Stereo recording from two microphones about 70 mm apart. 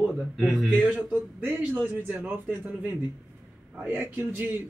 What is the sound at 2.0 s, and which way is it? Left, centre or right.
Speech, right.